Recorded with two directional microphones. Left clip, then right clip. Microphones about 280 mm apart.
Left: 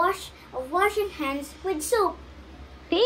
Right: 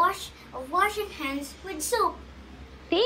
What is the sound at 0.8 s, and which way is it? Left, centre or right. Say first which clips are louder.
Speech: left 2 dB; centre.